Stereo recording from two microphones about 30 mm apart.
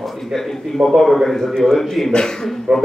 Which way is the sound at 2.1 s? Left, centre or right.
Left.